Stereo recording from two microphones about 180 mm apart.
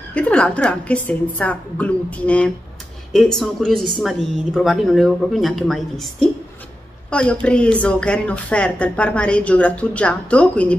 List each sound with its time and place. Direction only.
0.1 s a woman's voice: 5° left (ahead or behind)